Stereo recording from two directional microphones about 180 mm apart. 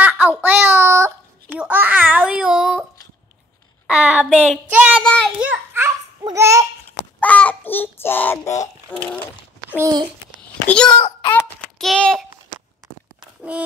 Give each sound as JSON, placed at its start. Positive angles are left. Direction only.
{"t": 0.0, "sound": "a sound", "side_deg": -10}
{"t": 0.4, "sound": "child singing", "side_deg": -10}
{"t": 1.6, "sound": "babbling", "side_deg": -10}
{"t": 3.8, "sound": "child singing", "side_deg": -5}
{"t": 5.0, "sound": "a child's voice", "side_deg": 5}
{"t": 5.4, "sound": "babbling", "side_deg": -10}
{"t": 7.2, "sound": "child singing", "side_deg": 10}
{"t": 8.9, "sound": "a sound", "side_deg": 10}
{"t": 9.7, "sound": "a child's voice", "side_deg": -15}
{"t": 10.7, "sound": "a sound", "side_deg": 5}
{"t": 11.0, "sound": "a child's voice", "side_deg": 30}
{"t": 11.8, "sound": "a sound", "side_deg": 0}
{"t": 13.4, "sound": "a child's voice", "side_deg": -5}